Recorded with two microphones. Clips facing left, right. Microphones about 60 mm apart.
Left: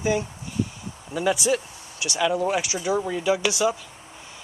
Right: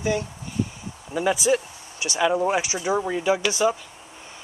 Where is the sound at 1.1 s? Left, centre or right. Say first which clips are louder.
Right 1 dB; centre.